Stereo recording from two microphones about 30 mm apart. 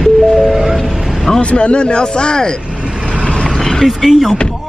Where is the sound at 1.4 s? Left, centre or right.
Left.